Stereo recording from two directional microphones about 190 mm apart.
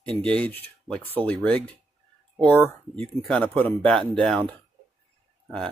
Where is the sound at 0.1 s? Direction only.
5° left (ahead or behind).